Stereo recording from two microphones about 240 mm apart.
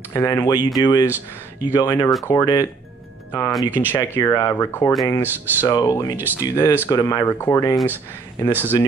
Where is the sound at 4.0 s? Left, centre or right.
Centre.